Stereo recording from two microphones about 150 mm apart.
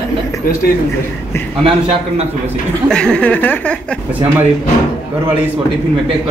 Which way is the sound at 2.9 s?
5° left (ahead or behind).